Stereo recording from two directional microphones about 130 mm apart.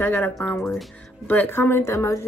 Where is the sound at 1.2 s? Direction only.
10° left (ahead or behind).